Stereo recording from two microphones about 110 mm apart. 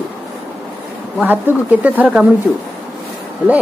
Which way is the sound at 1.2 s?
15° right (ahead or behind).